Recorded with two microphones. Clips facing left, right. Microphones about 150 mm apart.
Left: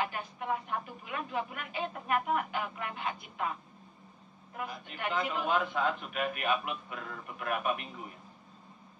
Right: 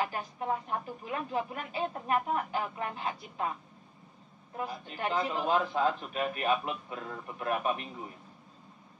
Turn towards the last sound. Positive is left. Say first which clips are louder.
# right 2 dB
turn(degrees=-35)  # may be behind; listen again after turning